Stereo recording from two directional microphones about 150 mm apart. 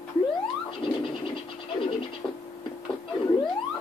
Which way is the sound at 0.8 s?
35° left (ahead or behind).